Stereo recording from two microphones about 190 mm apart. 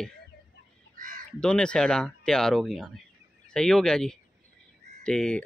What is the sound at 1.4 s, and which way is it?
Speech, 5° left (ahead or behind).